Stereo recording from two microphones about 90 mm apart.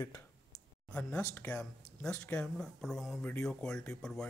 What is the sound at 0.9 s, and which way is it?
Speech, 15° left (ahead or behind).